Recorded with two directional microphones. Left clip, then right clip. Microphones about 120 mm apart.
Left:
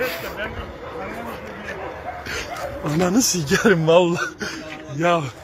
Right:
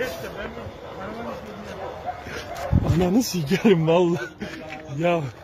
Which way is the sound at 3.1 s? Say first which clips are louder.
Left 4 dB; 30° right (ahead or behind).